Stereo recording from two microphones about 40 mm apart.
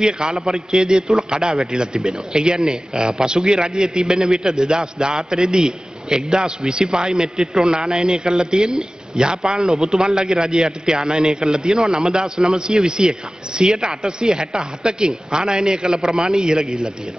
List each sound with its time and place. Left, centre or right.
0.0 s a man's voice: centre